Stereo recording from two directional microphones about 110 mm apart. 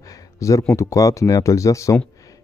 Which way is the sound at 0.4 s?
30° left (ahead or behind).